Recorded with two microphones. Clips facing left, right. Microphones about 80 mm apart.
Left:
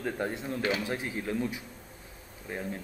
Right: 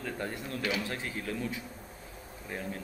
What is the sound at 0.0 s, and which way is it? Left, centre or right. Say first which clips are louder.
A man's voice: left 4 dB; left.